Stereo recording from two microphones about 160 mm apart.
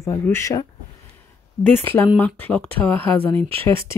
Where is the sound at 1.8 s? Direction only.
10° left (ahead or behind).